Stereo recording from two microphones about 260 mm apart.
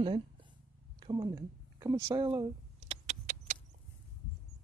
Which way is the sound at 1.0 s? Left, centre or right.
Centre.